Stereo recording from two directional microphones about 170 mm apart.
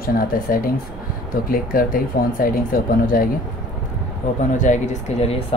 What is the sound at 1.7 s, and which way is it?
Speech, 55° left (ahead or behind).